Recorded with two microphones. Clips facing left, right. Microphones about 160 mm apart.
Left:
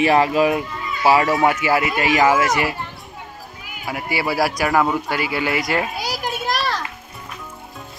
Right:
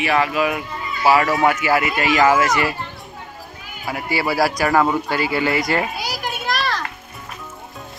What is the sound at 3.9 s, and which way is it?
Speech, 15° left (ahead or behind).